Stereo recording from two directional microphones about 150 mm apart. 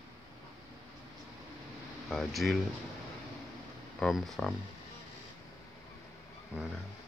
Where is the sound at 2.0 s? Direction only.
Centre (ahead or behind).